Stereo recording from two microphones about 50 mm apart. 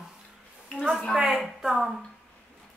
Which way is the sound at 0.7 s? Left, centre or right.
Left.